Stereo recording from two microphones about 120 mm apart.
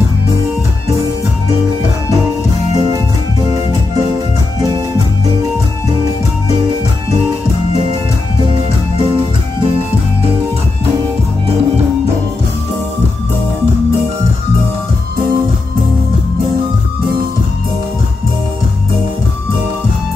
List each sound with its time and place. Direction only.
2.7 s music: 30° right (ahead or behind)
8.5 s music: 45° right (ahead or behind)
11.4 s music: 55° right (ahead or behind)